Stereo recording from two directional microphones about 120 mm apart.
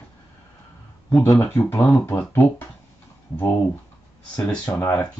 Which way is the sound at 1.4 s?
20° left (ahead or behind).